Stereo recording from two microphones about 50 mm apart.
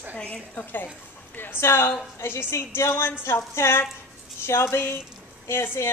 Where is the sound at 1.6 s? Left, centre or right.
Left.